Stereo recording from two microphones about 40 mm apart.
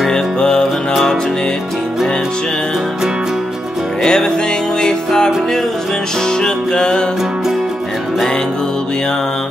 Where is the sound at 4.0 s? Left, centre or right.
Centre.